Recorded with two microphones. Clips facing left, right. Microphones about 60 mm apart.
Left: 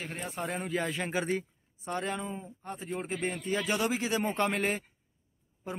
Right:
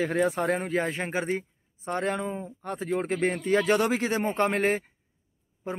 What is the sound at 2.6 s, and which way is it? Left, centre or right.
Speech, right.